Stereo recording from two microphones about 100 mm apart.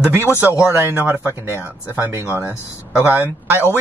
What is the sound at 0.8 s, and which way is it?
Speech, 20° right (ahead or behind).